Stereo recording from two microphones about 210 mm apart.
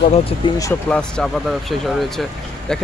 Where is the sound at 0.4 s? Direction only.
20° left (ahead or behind).